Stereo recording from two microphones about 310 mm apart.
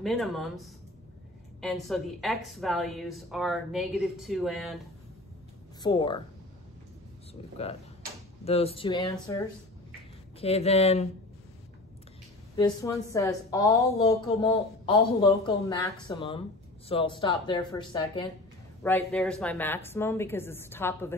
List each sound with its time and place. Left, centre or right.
0.0 s a woman's voice: centre
5.8 s speech: centre
7.6 s speech: centre
12.5 s speech: centre